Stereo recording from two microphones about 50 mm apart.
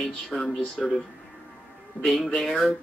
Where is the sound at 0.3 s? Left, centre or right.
Centre.